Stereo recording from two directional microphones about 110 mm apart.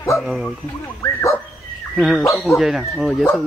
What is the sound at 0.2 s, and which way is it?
Speech, centre (ahead or behind).